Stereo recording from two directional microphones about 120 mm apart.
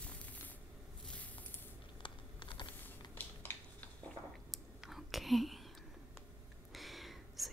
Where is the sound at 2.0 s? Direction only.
40° left (ahead or behind).